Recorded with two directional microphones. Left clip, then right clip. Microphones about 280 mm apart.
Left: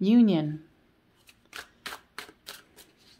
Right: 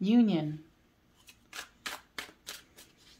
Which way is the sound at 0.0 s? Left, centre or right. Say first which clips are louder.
Left 5 dB; left.